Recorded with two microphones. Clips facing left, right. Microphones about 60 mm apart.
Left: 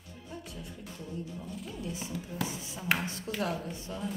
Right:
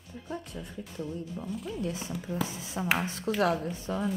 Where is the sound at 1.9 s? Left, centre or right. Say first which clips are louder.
Right 4 dB; right.